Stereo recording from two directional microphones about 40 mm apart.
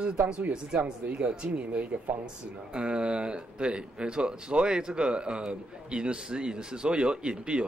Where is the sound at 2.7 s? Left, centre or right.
Right.